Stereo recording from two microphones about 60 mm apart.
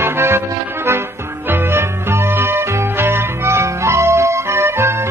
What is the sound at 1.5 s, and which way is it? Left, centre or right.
Music, right.